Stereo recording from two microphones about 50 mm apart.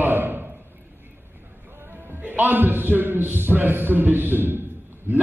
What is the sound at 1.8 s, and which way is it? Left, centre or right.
A man's voice, right.